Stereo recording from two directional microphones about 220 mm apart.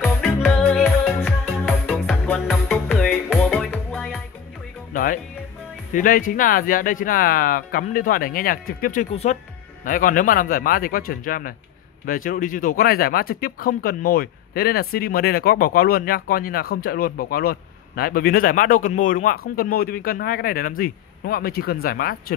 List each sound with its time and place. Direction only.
0.0 s music: 5° left (ahead or behind)
4.9 s music: 40° left (ahead or behind)
5.9 s speech: 40° left (ahead or behind)
9.1 s speech: 30° left (ahead or behind)